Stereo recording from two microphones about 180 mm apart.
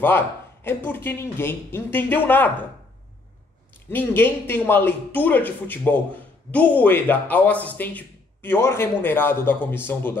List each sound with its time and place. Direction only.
0.7 s a man's voice: 10° left (ahead or behind)
3.9 s a man's voice: 10° left (ahead or behind)